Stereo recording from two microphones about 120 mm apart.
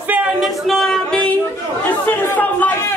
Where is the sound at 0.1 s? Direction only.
10° right (ahead or behind).